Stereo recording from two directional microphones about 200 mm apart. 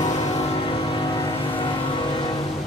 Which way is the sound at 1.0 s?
25° left (ahead or behind).